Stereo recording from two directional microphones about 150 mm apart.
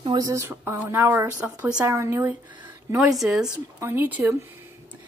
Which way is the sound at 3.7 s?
15° right (ahead or behind).